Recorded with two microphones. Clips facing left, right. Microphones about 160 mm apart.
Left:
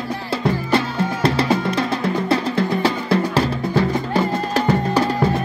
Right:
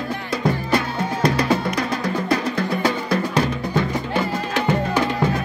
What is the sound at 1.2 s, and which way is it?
Music, 30° left (ahead or behind).